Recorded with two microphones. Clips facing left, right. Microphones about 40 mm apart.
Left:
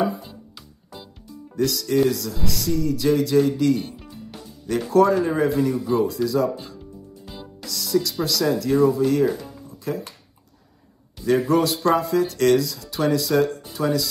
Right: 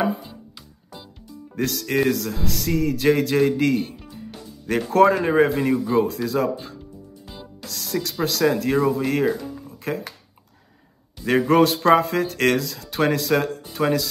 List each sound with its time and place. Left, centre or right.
1.5 s speech: right
4.0 s music: centre
4.6 s speech: right
9.7 s music: right
11.2 s speech: right